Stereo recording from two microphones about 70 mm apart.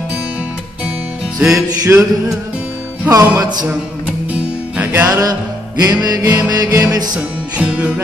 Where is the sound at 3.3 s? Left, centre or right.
Right.